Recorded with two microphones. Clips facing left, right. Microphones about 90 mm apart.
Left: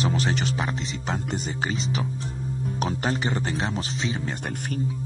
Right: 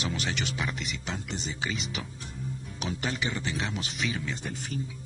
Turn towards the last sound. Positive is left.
turn(degrees=35)  # may be behind; listen again after turning